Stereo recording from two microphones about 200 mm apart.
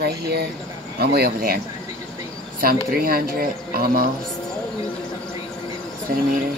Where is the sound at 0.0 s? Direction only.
50° right (ahead or behind).